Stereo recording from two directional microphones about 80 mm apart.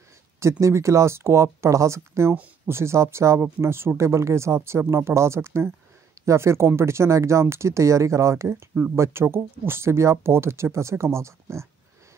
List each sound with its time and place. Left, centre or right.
0.4 s speech: right